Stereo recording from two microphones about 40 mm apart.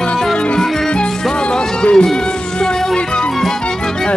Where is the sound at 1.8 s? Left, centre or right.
Left.